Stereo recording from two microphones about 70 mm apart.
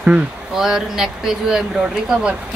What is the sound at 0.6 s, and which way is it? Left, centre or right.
Speech, centre.